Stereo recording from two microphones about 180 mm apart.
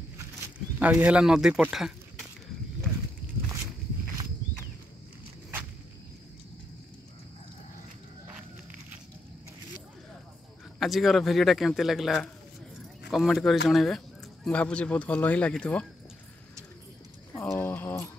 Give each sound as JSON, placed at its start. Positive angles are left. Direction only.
{"t": 0.7, "sound": "speech", "side_deg": -10}
{"t": 10.8, "sound": "speech", "side_deg": 0}
{"t": 17.3, "sound": "a sound", "side_deg": 15}